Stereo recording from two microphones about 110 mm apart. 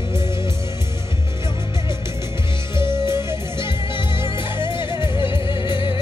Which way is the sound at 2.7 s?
45° left (ahead or behind).